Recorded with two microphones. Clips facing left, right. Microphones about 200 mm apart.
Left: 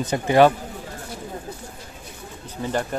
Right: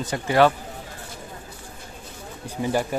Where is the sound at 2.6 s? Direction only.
10° right (ahead or behind).